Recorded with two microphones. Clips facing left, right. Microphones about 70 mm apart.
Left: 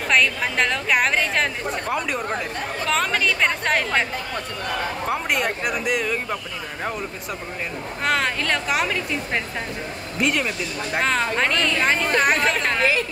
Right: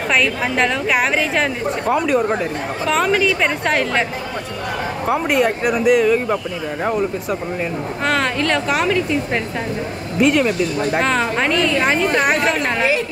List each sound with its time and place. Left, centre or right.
0.1 s a woman's voice: centre
5.1 s a woman's voice: centre
6.2 s speech: centre
8.0 s a woman's voice: centre